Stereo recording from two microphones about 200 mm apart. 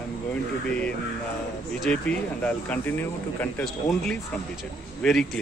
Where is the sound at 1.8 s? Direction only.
5° left (ahead or behind).